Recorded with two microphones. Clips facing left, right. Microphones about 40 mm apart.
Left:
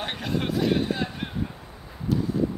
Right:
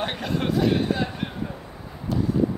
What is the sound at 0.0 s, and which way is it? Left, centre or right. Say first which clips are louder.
Speech: right 2 dB; centre.